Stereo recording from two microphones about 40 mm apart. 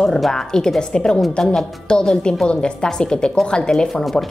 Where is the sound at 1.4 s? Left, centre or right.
Centre.